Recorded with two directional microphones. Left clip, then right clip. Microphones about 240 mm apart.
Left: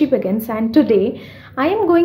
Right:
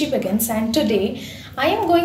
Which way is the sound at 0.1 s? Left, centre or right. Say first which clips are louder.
Left 4 dB; left.